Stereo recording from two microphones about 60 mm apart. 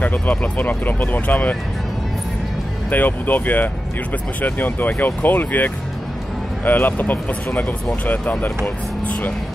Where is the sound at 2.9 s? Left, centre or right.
Left.